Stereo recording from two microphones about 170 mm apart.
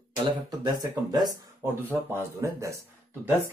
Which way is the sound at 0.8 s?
25° right (ahead or behind).